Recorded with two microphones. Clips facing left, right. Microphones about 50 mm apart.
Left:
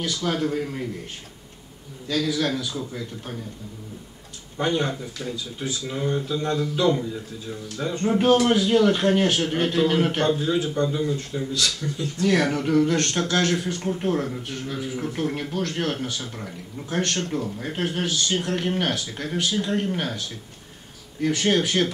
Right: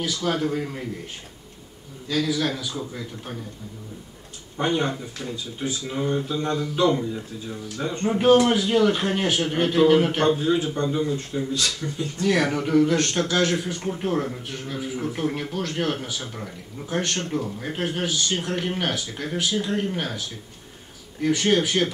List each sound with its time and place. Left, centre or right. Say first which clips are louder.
0.0 s a man's voice: even; centre
2.0 s a man's voice: even; centre
4.6 s a man's voice: even; centre
12.2 s a man's voice: left 1 dB; centre